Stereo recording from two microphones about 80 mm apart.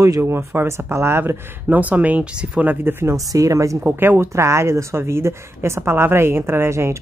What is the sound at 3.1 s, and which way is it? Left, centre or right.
Speech, right.